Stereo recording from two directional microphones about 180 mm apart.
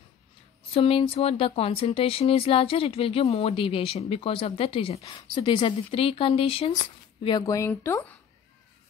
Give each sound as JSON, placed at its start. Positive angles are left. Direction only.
{"t": 0.7, "sound": "speech", "side_deg": 30}